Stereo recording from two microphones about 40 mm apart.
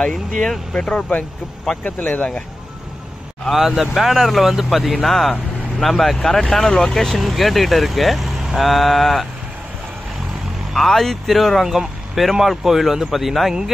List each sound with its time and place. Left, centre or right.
0.1 s speech: centre
0.7 s speech: left
1.9 s speech: left
3.6 s speech: centre
6.1 s speech: centre
10.7 s speech: centre